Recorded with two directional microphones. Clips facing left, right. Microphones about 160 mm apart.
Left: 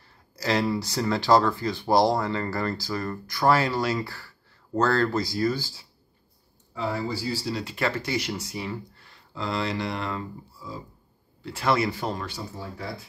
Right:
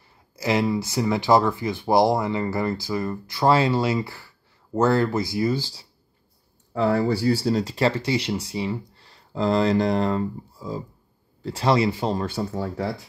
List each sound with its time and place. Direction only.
0.0 s speech: 20° right (ahead or behind)
6.7 s speech: 60° right (ahead or behind)
7.5 s speech: 35° right (ahead or behind)
12.3 s speech: 65° right (ahead or behind)